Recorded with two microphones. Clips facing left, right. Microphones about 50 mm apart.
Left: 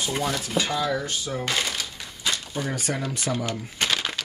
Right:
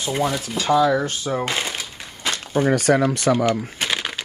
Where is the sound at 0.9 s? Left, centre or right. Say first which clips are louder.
Right 6 dB; right.